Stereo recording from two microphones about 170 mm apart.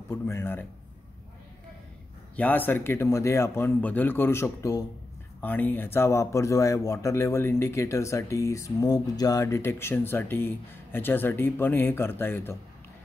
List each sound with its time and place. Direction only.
0.1 s speech: 15° left (ahead or behind)
2.3 s speech: 10° left (ahead or behind)